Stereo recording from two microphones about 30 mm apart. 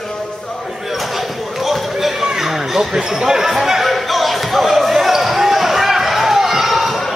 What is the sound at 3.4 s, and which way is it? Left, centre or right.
Chatter, centre.